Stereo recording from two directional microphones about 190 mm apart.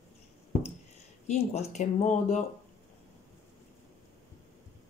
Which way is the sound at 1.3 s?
35° left (ahead or behind).